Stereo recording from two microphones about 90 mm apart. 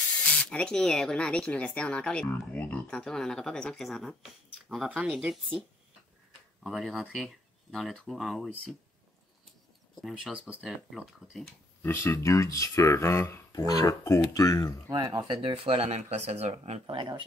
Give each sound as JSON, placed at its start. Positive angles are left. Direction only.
{"t": 0.0, "sound": "speech", "side_deg": 10}
{"t": 3.0, "sound": "speech", "side_deg": 5}
{"t": 6.6, "sound": "speech", "side_deg": 0}
{"t": 10.3, "sound": "speech", "side_deg": -10}
{"t": 11.1, "sound": "speech", "side_deg": 0}
{"t": 11.8, "sound": "speech", "side_deg": 25}
{"t": 13.5, "sound": "speech", "side_deg": 45}
{"t": 14.9, "sound": "speech", "side_deg": -50}
{"t": 15.4, "sound": "speech", "side_deg": -85}
{"t": 16.8, "sound": "speech", "side_deg": -60}